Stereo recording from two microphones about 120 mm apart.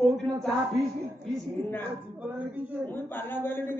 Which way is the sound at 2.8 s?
15° left (ahead or behind).